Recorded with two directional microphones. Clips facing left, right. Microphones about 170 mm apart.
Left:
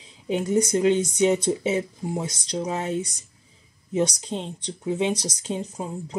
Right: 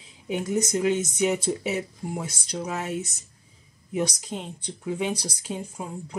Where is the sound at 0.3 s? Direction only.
30° left (ahead or behind).